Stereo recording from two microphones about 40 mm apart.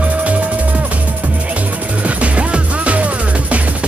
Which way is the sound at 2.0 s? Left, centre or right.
Right.